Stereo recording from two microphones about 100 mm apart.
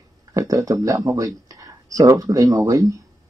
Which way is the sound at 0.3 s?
35° right (ahead or behind).